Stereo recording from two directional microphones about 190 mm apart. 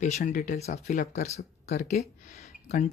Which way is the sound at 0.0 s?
40° left (ahead or behind).